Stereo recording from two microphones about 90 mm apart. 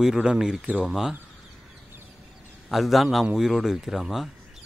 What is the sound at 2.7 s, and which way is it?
Speech, centre (ahead or behind).